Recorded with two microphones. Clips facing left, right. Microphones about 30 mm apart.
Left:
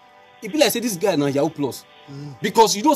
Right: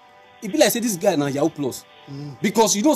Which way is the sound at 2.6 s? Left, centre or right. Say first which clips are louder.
Left 2 dB; left.